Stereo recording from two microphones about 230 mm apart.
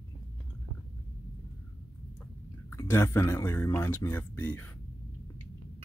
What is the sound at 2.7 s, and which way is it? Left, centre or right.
Speech, centre.